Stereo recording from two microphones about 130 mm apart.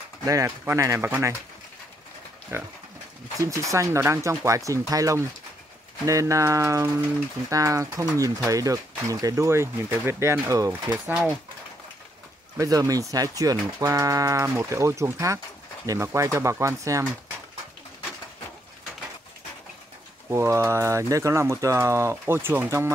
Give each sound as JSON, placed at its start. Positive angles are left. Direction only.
{"t": 0.2, "sound": "speech", "side_deg": -25}
{"t": 2.5, "sound": "speech", "side_deg": -20}
{"t": 12.5, "sound": "speech", "side_deg": -30}
{"t": 20.2, "sound": "speech", "side_deg": -20}